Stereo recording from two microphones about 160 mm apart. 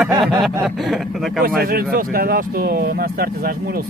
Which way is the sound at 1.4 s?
70° right (ahead or behind).